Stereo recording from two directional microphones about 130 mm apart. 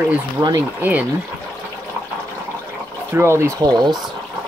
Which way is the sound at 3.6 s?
30° right (ahead or behind).